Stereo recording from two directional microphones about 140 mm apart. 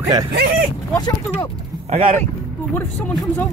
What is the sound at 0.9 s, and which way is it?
Speech, 30° left (ahead or behind).